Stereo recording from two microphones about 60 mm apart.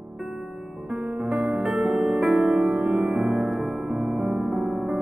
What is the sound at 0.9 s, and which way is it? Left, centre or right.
Music, centre.